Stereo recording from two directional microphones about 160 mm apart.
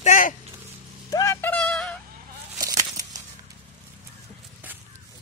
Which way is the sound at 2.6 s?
25° right (ahead or behind).